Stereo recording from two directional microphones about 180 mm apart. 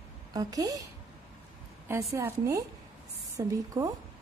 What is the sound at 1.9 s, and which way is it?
A woman's voice, 15° right (ahead or behind).